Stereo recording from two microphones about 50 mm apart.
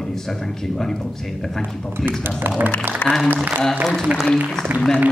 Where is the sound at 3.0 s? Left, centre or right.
Left.